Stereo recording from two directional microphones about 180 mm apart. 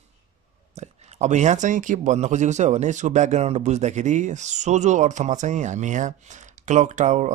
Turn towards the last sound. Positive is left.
turn(degrees=-40)  # may be behind; listen again after turning